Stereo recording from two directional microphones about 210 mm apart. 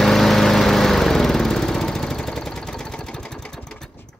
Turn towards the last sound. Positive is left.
turn(degrees=5)  # may be behind; listen again after turning